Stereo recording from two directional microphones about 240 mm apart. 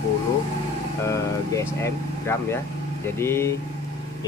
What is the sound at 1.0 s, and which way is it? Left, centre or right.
Speech, centre.